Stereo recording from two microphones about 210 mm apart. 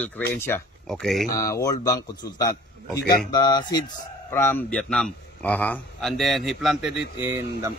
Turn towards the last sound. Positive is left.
turn(degrees=-10)  # may be behind; listen again after turning